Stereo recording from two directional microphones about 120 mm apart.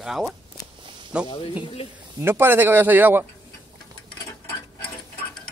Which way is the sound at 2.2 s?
20° right (ahead or behind).